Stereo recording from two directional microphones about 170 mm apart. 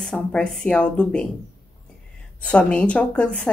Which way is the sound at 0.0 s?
5° left (ahead or behind).